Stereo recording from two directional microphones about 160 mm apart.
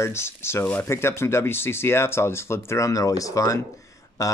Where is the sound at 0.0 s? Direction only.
15° left (ahead or behind).